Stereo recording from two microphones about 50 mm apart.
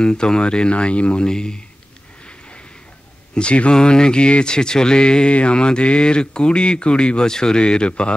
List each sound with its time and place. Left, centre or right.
0.0 s speech: centre
3.3 s speech: left